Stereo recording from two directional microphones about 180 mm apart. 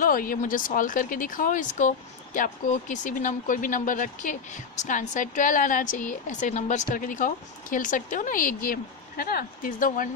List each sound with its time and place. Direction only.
0.0 s speech: 50° left (ahead or behind)